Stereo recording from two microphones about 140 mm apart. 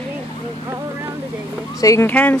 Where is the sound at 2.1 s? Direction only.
10° left (ahead or behind).